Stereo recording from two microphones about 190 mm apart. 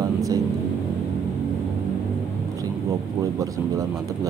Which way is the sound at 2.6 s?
20° right (ahead or behind).